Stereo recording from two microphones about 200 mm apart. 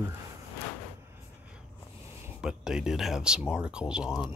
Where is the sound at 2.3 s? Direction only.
5° right (ahead or behind).